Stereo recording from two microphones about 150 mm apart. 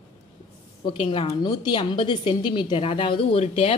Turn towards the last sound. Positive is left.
turn(degrees=40)  # may be behind; listen again after turning